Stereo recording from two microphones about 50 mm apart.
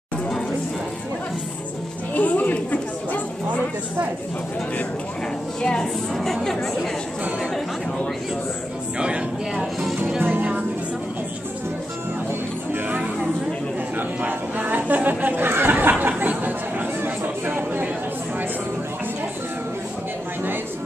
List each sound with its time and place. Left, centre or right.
2.1 s chatter: left
5.6 s a woman's voice: centre
8.9 s music: centre
10.2 s music: right
13.9 s a sound: right